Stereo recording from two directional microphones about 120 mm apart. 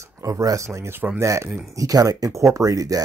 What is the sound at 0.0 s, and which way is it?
Speech, 25° right (ahead or behind).